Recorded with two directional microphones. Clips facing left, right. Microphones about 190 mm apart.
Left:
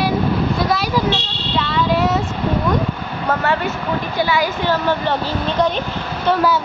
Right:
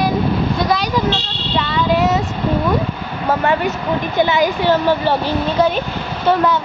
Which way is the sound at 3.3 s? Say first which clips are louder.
Right 3 dB; 15° right (ahead or behind).